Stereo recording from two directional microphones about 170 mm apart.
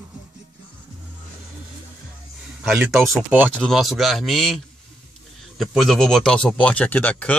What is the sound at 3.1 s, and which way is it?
Speech, 10° right (ahead or behind).